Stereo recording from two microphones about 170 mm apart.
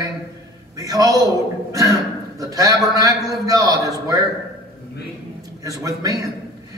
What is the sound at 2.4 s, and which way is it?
A man's voice, 20° right (ahead or behind).